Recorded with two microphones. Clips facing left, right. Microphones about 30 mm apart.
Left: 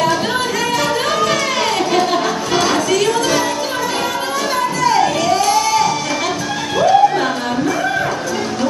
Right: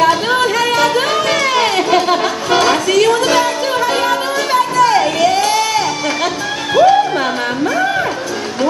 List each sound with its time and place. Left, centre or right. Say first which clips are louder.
0.0 s music: right 4 dB; centre